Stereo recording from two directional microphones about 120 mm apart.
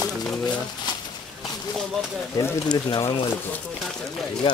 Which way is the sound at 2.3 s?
35° left (ahead or behind).